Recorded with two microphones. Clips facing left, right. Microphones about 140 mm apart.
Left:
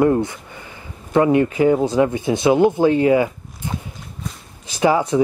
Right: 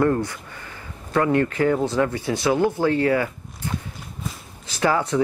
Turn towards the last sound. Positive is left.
turn(degrees=15)  # may be behind; listen again after turning